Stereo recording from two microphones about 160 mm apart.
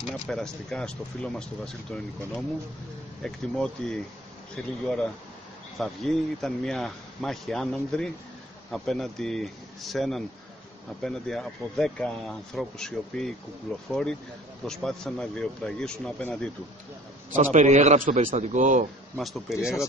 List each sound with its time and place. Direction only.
0.3 s speech: centre (ahead or behind)
17.4 s a man's voice: 50° right (ahead or behind)
19.1 s speech: centre (ahead or behind)